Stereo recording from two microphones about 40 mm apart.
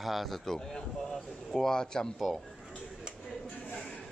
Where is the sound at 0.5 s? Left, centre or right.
Centre.